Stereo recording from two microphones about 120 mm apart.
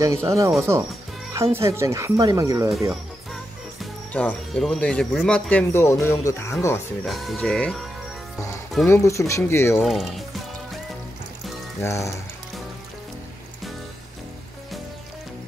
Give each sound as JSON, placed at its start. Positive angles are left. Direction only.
{"t": 0.0, "sound": "speech", "side_deg": -25}
{"t": 4.1, "sound": "speech", "side_deg": 10}
{"t": 7.1, "sound": "speech", "side_deg": 0}
{"t": 8.8, "sound": "speech", "side_deg": 20}
{"t": 9.8, "sound": "speech", "side_deg": 0}
{"t": 11.8, "sound": "speech", "side_deg": 25}